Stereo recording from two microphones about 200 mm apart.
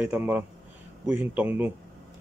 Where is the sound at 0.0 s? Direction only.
5° right (ahead or behind).